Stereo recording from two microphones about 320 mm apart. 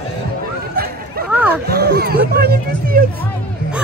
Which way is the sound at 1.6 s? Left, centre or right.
Right.